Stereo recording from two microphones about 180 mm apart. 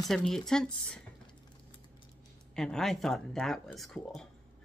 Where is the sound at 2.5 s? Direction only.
Centre (ahead or behind).